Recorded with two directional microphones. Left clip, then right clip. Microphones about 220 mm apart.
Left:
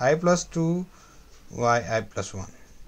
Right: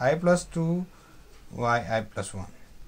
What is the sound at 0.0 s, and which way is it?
Speech, 30° left (ahead or behind).